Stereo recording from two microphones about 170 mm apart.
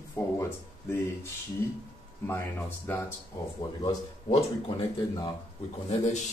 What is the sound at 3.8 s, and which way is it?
Speech, 35° left (ahead or behind).